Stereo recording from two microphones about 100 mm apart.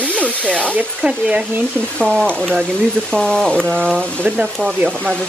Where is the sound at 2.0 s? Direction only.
10° left (ahead or behind).